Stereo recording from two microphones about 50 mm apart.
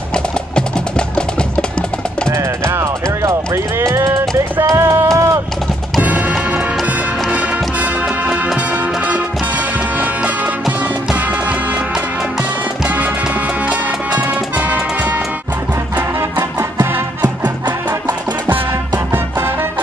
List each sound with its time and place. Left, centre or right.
0.1 s music: centre
2.2 s music: right
5.9 s music: right
9.9 s music: right
13.7 s music: right
16.2 s music: right